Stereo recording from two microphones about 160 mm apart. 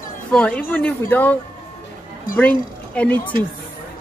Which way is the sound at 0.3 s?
5° left (ahead or behind).